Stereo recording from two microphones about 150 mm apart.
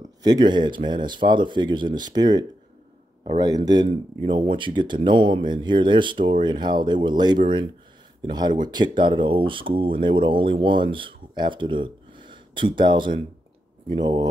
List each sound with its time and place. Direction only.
0.2 s speech: 25° right (ahead or behind)